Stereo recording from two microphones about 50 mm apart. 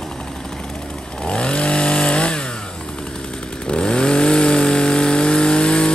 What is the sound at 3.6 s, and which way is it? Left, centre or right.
Chainsaw, centre.